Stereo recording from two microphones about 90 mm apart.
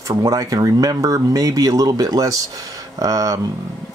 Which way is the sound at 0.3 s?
40° right (ahead or behind).